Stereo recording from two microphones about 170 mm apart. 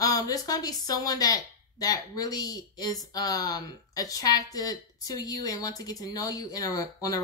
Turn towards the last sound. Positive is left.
turn(degrees=20)  # may be behind; listen again after turning